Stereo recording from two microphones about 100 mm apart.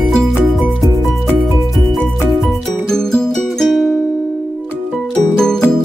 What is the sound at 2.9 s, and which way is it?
Music, 5° left (ahead or behind).